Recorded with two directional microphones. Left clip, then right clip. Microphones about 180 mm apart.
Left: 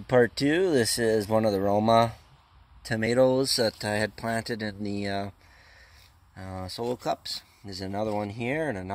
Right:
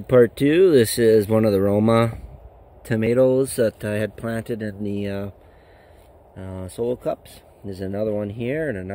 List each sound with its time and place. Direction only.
0.0 s speech: 35° right (ahead or behind)
6.3 s speech: 15° right (ahead or behind)
7.6 s speech: 25° right (ahead or behind)